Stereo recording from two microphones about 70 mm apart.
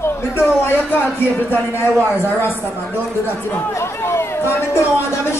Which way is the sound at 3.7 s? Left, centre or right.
Left.